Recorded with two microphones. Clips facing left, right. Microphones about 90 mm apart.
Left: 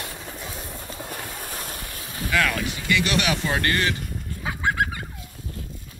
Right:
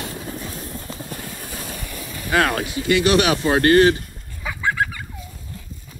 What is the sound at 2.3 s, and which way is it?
Speech, 45° right (ahead or behind).